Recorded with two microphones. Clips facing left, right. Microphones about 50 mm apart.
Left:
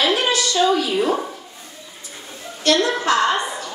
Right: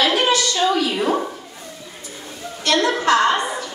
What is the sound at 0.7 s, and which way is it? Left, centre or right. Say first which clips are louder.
Speech: even; right.